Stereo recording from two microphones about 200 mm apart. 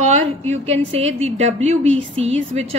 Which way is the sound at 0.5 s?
30° right (ahead or behind).